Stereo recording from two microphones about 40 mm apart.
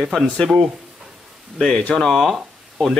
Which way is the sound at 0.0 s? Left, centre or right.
Centre.